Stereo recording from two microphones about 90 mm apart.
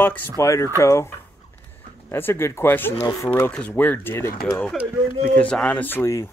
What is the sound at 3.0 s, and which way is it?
Speech, 40° left (ahead or behind).